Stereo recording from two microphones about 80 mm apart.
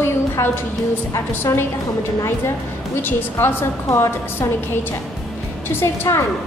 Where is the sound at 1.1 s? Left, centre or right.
Left.